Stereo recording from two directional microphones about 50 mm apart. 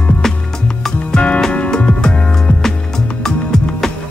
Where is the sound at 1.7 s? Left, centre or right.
Centre.